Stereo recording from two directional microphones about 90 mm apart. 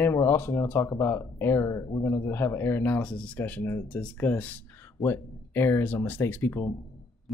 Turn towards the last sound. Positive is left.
turn(degrees=30)  # may be behind; listen again after turning